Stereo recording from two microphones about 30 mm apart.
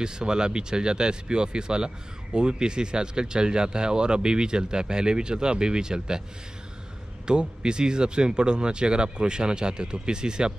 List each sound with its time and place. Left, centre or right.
0.0 s speech: right
7.2 s speech: right